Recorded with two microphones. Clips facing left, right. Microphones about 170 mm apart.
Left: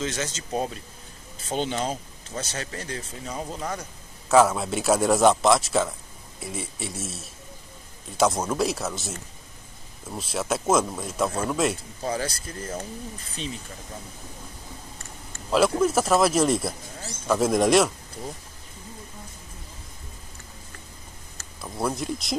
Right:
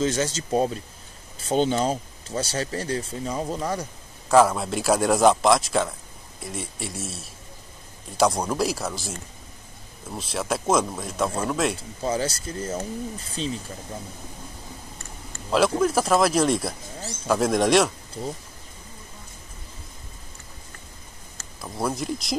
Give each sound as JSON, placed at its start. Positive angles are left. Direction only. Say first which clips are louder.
{"t": 0.0, "sound": "speech", "louder": "right 6 dB", "side_deg": -35}
{"t": 4.3, "sound": "speech", "louder": "right 1 dB", "side_deg": 0}
{"t": 12.1, "sound": "speech", "louder": "right 3 dB", "side_deg": -25}
{"t": 15.8, "sound": "speech", "louder": "even", "side_deg": 0}
{"t": 21.5, "sound": "speech", "louder": "right 1 dB", "side_deg": 0}